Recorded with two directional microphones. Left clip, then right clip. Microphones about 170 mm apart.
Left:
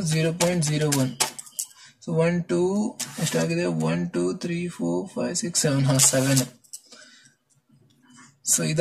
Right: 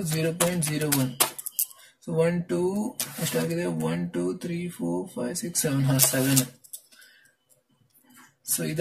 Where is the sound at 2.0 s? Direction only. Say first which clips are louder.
Left 1 dB; 25° left (ahead or behind).